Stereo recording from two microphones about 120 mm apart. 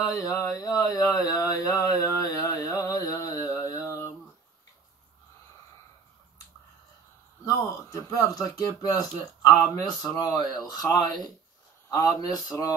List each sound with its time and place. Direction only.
0.0 s a sound: 30° left (ahead or behind)
7.4 s speech: 25° left (ahead or behind)
10.0 s speech: 35° left (ahead or behind)